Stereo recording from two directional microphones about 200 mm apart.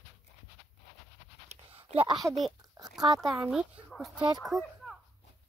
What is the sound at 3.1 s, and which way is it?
Speech, 15° right (ahead or behind).